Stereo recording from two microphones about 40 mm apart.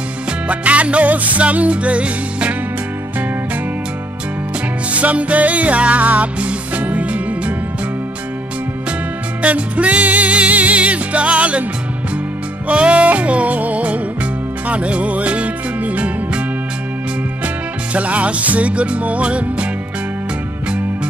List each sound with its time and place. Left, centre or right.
0.5 s music: right
4.9 s music: right
9.4 s music: right
12.6 s music: right
17.9 s music: right